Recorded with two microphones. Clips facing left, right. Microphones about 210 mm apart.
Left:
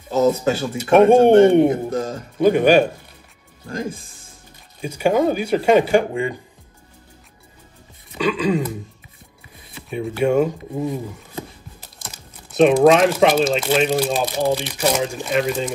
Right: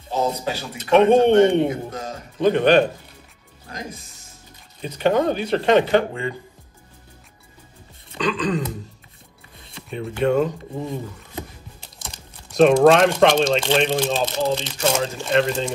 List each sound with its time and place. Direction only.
0.2 s speech: 50° left (ahead or behind)
2.3 s speech: 10° left (ahead or behind)
3.6 s speech: 45° left (ahead or behind)
4.8 s speech: 10° left (ahead or behind)
8.1 s speech: 10° left (ahead or behind)